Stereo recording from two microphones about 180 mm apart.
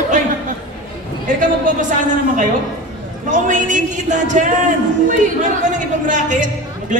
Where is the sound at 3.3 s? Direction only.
45° right (ahead or behind).